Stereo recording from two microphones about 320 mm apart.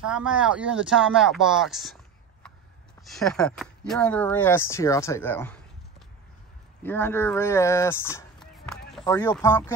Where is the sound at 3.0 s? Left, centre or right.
Centre.